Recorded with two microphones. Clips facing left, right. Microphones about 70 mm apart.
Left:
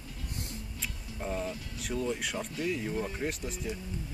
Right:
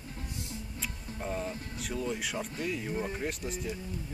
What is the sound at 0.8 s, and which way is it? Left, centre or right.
Music, centre.